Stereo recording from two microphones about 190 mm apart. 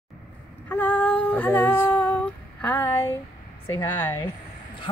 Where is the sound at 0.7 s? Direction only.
10° left (ahead or behind).